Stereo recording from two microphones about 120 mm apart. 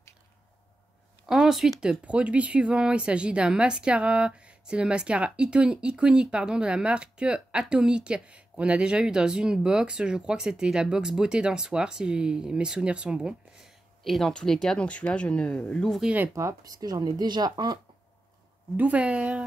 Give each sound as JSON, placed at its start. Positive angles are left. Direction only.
{"t": 1.2, "sound": "speech", "side_deg": -5}
{"t": 16.0, "sound": "speech", "side_deg": -10}
{"t": 16.3, "sound": "speech", "side_deg": -30}
{"t": 18.8, "sound": "speech", "side_deg": -10}